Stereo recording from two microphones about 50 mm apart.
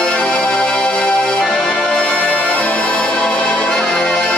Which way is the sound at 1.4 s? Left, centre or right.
Centre.